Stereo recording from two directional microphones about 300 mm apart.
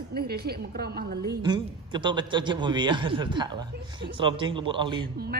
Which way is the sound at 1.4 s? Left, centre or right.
Centre.